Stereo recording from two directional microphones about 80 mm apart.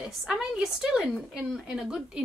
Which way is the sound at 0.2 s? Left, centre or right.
Centre.